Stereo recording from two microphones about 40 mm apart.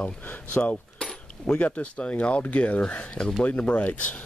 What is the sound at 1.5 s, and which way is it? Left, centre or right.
Speech, left.